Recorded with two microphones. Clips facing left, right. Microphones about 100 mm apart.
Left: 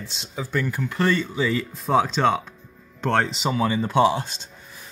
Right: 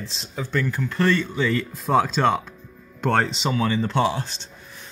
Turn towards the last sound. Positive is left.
turn(degrees=15)  # may be behind; listen again after turning